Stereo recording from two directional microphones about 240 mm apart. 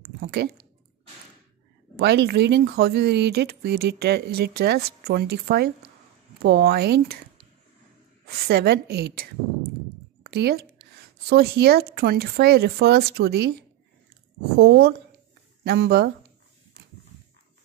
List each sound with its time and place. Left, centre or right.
0.2 s speech: right
2.0 s a woman's voice: right
8.3 s a woman's voice: right